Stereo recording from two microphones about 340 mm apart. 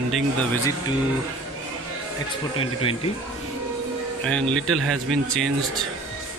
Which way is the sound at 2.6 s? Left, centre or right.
Centre.